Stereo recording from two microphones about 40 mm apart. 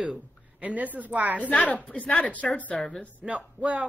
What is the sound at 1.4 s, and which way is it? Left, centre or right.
Speech, left.